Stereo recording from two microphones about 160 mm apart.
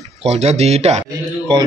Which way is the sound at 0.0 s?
40° right (ahead or behind).